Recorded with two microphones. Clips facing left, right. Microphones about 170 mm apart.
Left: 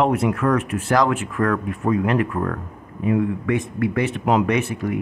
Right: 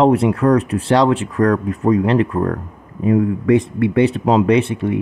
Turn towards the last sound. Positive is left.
turn(degrees=-30)  # may be behind; listen again after turning